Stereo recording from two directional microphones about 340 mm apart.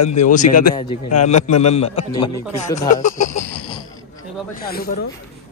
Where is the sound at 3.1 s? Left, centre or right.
Left.